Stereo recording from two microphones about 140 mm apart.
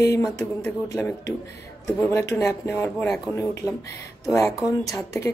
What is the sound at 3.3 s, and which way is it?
Speech, 20° left (ahead or behind).